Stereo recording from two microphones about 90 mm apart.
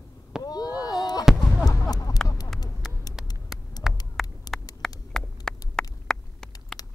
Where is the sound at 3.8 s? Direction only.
5° right (ahead or behind).